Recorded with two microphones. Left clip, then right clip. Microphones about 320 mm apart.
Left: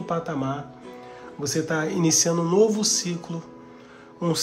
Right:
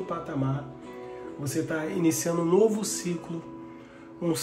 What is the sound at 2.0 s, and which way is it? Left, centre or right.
Speech, centre.